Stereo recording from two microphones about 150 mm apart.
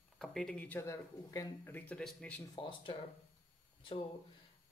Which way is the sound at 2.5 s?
35° left (ahead or behind).